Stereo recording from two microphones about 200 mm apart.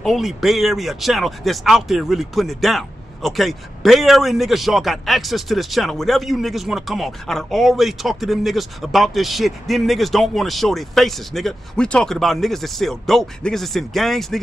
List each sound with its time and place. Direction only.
0.0 s speech: centre (ahead or behind)